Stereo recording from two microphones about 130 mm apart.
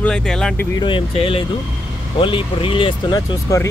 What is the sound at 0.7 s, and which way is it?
Speech, 40° left (ahead or behind).